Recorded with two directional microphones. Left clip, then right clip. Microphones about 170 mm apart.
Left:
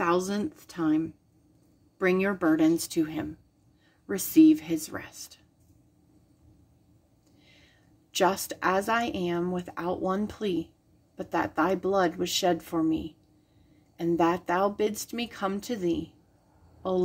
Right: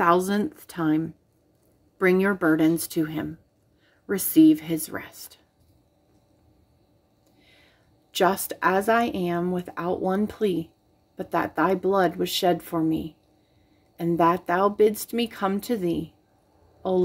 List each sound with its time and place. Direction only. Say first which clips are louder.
0.0 s speech: right 6 dB; 25° right (ahead or behind)
7.4 s a woman's voice: right 2 dB; 15° right (ahead or behind)